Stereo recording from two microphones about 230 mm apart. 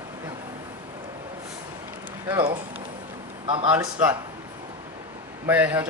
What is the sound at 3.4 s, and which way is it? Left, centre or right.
Speech, right.